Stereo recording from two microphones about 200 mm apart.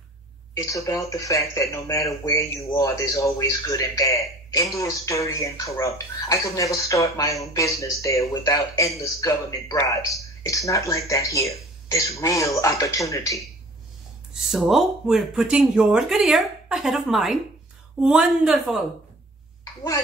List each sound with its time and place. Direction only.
0.7 s speech: 15° left (ahead or behind)
14.3 s speech: centre (ahead or behind)